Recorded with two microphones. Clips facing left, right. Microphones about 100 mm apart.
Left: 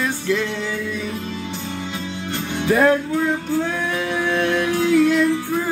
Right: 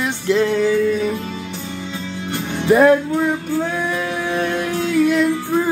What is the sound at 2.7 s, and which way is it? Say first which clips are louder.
Music: right 5 dB; 20° right (ahead or behind).